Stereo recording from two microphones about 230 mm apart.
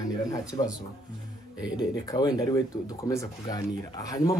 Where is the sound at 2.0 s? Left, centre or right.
Centre.